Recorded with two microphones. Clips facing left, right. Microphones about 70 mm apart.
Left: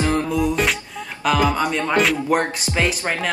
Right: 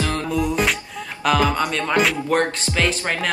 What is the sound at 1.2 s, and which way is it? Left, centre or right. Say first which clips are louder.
Speech: even; centre.